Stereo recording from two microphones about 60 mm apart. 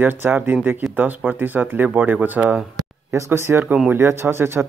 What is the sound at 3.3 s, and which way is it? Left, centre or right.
A man's voice, right.